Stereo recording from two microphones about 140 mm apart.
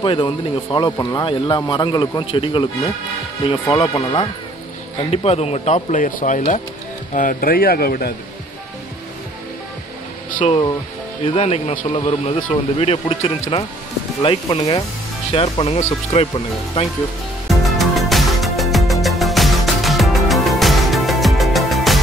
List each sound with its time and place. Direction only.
0.0 s speech: 35° left (ahead or behind)
3.7 s speech: 40° left (ahead or behind); by 6.6 s 60° left (ahead or behind)
7.2 s speech: 80° left
10.4 s speech: 40° left (ahead or behind)
17.6 s music: centre (ahead or behind)